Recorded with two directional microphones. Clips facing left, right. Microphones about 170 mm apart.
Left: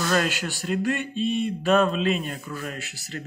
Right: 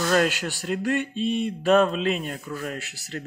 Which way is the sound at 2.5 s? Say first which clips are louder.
Right 2 dB; 35° right (ahead or behind).